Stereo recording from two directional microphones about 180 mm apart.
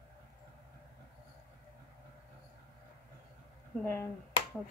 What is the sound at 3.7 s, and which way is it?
Speech, 15° left (ahead or behind).